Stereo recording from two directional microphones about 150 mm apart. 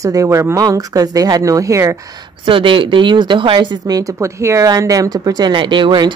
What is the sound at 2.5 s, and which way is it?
Speech, 35° right (ahead or behind).